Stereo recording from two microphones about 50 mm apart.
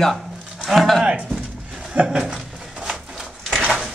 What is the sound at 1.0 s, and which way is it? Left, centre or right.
Speech, right.